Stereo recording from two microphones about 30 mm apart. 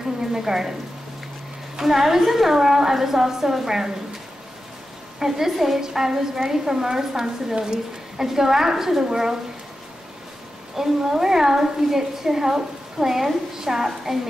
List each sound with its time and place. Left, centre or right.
0.2 s a woman's voice: centre
1.8 s a woman's voice: centre
5.2 s a woman's voice: centre
10.8 s a woman's voice: centre